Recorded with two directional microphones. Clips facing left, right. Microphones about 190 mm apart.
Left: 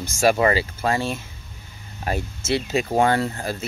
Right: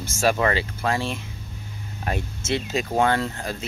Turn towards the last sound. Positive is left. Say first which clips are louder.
# left 3 dB
turn(degrees=5)  # may be behind; listen again after turning